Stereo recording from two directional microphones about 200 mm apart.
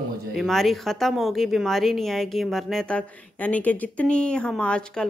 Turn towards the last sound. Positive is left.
turn(degrees=5)  # may be behind; listen again after turning